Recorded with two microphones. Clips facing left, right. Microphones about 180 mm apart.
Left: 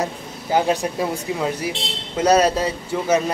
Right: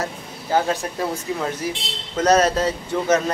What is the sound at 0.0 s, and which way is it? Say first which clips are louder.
Speech: left 3 dB; 15° left (ahead or behind).